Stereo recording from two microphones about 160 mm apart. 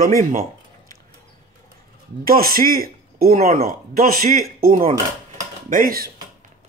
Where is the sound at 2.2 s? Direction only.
65° right (ahead or behind).